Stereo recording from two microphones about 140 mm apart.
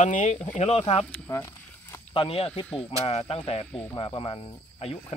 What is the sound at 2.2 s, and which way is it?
Speech, 45° left (ahead or behind).